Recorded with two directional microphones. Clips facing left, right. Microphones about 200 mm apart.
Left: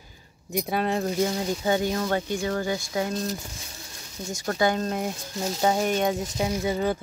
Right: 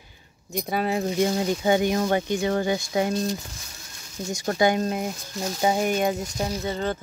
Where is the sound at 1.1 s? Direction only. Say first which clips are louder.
Right 3 dB; 20° right (ahead or behind).